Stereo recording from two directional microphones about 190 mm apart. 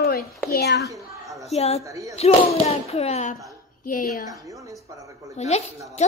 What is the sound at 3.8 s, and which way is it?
Speech, 50° left (ahead or behind).